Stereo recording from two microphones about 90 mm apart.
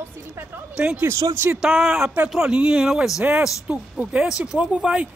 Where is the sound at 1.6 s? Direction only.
5° right (ahead or behind).